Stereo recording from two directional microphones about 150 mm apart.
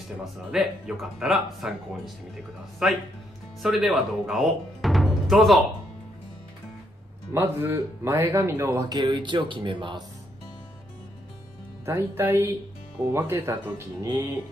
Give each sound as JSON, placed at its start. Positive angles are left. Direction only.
{"t": 0.2, "sound": "speech", "side_deg": -5}
{"t": 7.3, "sound": "speech", "side_deg": -15}
{"t": 11.8, "sound": "speech", "side_deg": -15}